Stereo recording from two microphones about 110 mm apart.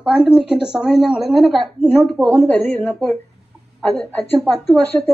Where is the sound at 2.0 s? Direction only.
Centre (ahead or behind).